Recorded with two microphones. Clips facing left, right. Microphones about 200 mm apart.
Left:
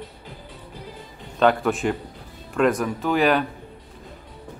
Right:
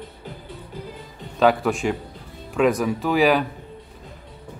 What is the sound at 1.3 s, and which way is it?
Speech, centre (ahead or behind).